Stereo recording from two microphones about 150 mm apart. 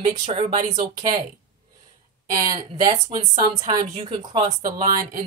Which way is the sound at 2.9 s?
30° right (ahead or behind).